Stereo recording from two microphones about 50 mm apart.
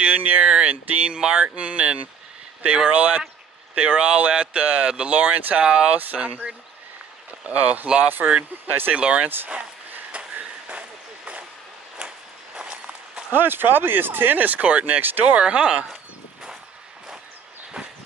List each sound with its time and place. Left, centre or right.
0.0 s speech: right
5.1 s speech: right
5.6 s speech: centre
5.9 s speech: right
10.1 s a sound: right
12.0 s a sound: centre
12.5 s walk: right
13.3 s speech: right
15.3 s speech: centre
17.8 s a sound: centre